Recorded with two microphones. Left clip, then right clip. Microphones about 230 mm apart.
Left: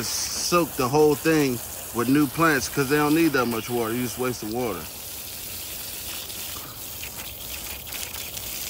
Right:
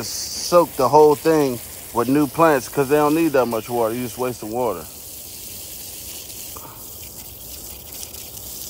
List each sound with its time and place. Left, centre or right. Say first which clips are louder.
0.0 s speech: even; centre
0.6 s speech: right 8 dB; centre